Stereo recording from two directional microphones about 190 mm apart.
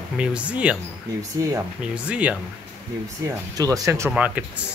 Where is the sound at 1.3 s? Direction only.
15° right (ahead or behind).